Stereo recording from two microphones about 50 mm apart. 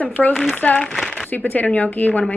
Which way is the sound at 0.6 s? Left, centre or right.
Left.